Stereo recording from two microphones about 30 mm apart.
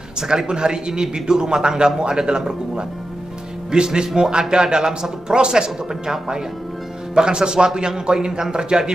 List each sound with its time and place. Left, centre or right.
0.3 s a man's voice: right